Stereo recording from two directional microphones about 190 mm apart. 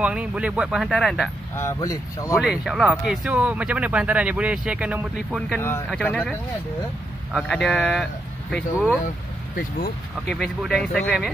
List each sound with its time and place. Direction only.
0.0 s speech: 5° right (ahead or behind)
1.6 s speech: 15° left (ahead or behind)
2.3 s speech: centre (ahead or behind)
5.6 s speech: 10° left (ahead or behind)
7.3 s speech: 5° left (ahead or behind)
9.6 s speech: 55° left (ahead or behind)
10.2 s speech: centre (ahead or behind)